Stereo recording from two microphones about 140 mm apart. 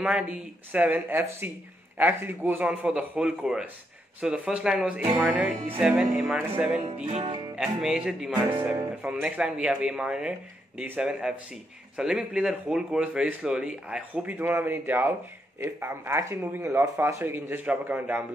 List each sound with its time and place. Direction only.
0.0 s a man's voice: 10° right (ahead or behind)
7.1 s music: 50° right (ahead or behind)
7.5 s a man's voice: 5° right (ahead or behind)